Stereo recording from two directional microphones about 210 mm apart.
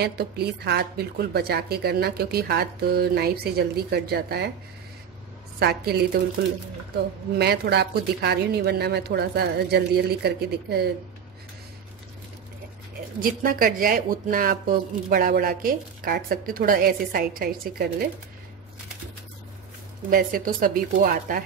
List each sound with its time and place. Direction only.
0.0 s speech: 50° right (ahead or behind)
5.6 s speech: 50° right (ahead or behind)
7.3 s speech: 50° right (ahead or behind)
13.2 s speech: 40° right (ahead or behind)
20.1 s speech: 40° right (ahead or behind)